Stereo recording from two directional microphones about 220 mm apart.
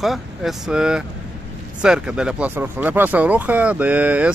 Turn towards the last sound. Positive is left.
turn(degrees=-5)  # may be behind; listen again after turning